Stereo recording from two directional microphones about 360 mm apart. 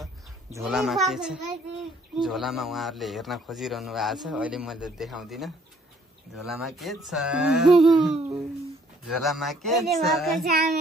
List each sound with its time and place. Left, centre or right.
0.0 s a child's voice: centre
10.4 s child singing: right